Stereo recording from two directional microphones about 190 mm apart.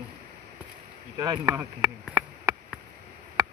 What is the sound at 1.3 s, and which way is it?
Speech, 15° right (ahead or behind).